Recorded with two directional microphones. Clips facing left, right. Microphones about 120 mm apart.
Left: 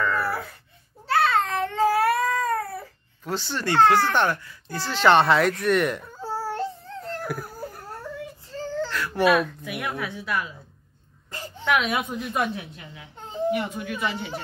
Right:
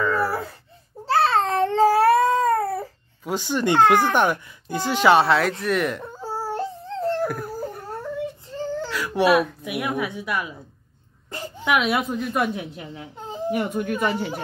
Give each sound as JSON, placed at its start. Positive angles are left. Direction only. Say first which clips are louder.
{"t": 0.0, "sound": "baby cry", "louder": "right 3 dB", "side_deg": -15}
{"t": 1.0, "sound": "cat", "louder": "right 2 dB", "side_deg": -30}
{"t": 3.3, "sound": "speech", "louder": "right 5 dB", "side_deg": -15}
{"t": 6.1, "sound": "baby cry", "louder": "right 1 dB", "side_deg": -15}
{"t": 7.2, "sound": "a sound", "louder": "right 4 dB", "side_deg": 0}
{"t": 8.5, "sound": "baby cry", "louder": "right 2 dB", "side_deg": -15}
{"t": 8.8, "sound": "speech", "louder": "right 1 dB", "side_deg": -10}
{"t": 12.9, "sound": "speech", "louder": "right 2 dB", "side_deg": -40}